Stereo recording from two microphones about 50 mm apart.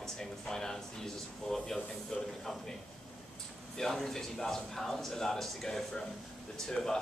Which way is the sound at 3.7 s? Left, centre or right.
Centre.